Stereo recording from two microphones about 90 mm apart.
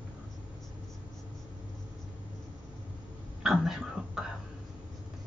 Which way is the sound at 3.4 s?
5° right (ahead or behind).